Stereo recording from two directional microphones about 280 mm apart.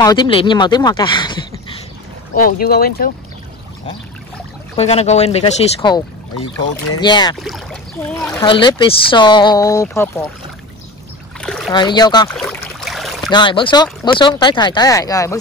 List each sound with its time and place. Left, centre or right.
0.0 s speech: centre
2.3 s speech: left
4.7 s speech: left
7.3 s speech: centre
8.5 s speech: centre
11.7 s speech: centre
12.4 s boat: centre
13.3 s speech: centre